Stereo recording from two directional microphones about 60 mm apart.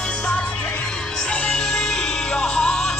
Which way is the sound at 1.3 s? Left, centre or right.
Centre.